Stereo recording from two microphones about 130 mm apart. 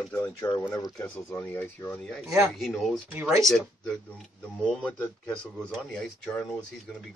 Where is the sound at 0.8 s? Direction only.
30° left (ahead or behind).